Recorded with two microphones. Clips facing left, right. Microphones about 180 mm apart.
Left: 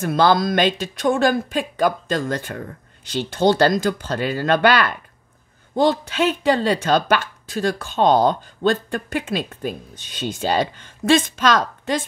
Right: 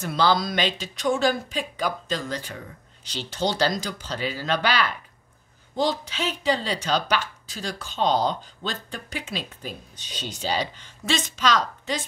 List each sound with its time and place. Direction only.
0.0 s a woman's voice: 50° left (ahead or behind)